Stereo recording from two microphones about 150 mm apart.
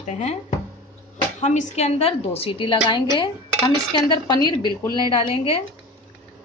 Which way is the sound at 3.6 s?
30° left (ahead or behind).